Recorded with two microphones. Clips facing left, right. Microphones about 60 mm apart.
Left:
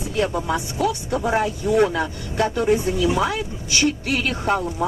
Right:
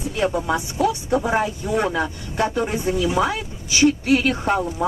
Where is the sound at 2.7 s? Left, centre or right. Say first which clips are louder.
Left 3 dB; centre.